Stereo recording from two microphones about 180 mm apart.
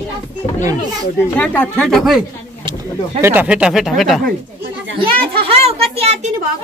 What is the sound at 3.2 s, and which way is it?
Speech, 10° right (ahead or behind).